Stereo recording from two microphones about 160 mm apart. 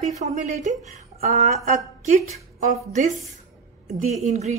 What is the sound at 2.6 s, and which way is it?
Speech, 50° right (ahead or behind).